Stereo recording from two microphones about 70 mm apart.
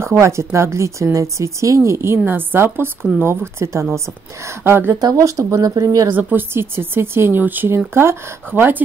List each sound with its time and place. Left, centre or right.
0.0 s speech: right
5.1 s speech: right
6.0 s speech: right